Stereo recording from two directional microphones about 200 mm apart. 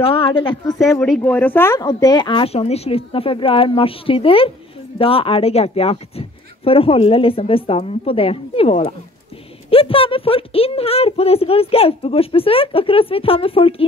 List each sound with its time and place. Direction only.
0.0 s speech: 25° left (ahead or behind)
0.9 s speech: 5° left (ahead or behind); by 13.8 s 30° left (ahead or behind)